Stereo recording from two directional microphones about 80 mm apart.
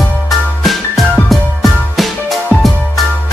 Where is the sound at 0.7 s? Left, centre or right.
Centre.